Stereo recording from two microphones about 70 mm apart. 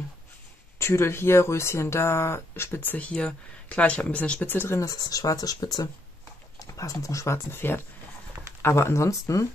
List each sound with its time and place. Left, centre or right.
0.7 s speech: left
4.7 s speech: left
6.7 s speech: left